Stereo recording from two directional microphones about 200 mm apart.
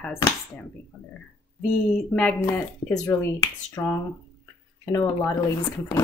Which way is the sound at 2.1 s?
5° left (ahead or behind).